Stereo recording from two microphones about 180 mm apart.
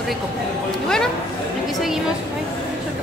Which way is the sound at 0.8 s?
5° left (ahead or behind).